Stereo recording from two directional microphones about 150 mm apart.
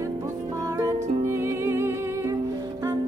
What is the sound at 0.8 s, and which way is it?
Music, 20° right (ahead or behind).